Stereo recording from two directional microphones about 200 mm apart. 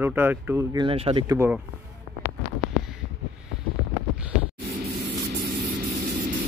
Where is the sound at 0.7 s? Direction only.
25° right (ahead or behind).